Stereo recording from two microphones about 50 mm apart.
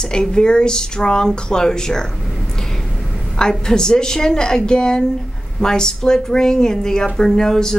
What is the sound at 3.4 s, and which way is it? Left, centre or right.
Speech, centre.